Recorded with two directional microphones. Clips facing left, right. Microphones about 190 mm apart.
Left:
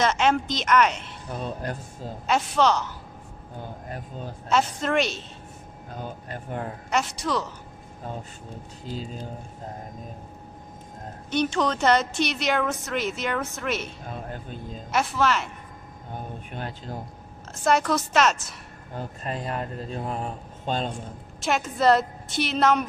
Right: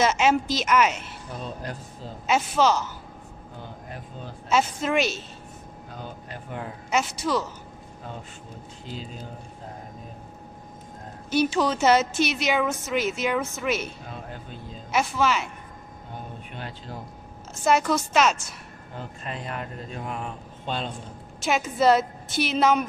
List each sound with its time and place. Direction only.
0.0 s a woman's voice: 5° right (ahead or behind)
1.4 s a sound: 50° left (ahead or behind)
2.2 s a woman's voice: 5° right (ahead or behind)
4.5 s a woman's voice: 5° right (ahead or behind)
6.3 s speech: 45° left (ahead or behind)
6.9 s a woman's voice: centre (ahead or behind)
11.2 s a woman's voice: 5° right (ahead or behind)
14.0 s speech: 50° left (ahead or behind)
14.9 s a woman's voice: centre (ahead or behind)
17.6 s a woman's voice: centre (ahead or behind)
18.9 s speech: 40° left (ahead or behind)
21.4 s a woman's voice: centre (ahead or behind)